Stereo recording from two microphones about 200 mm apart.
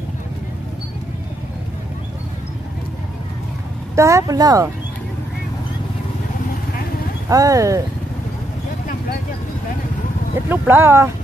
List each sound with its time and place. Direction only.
3.9 s a woman's voice: 15° right (ahead or behind)
7.2 s a woman's voice: 15° right (ahead or behind)
10.5 s a woman's voice: 10° right (ahead or behind)